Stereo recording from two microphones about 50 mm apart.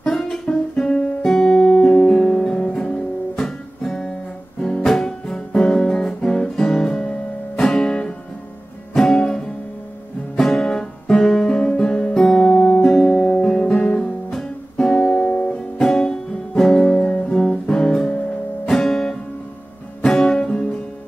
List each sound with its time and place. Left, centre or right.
0.0 s guitar: centre
4.6 s guitar: centre
8.9 s music: centre
20.2 s music: centre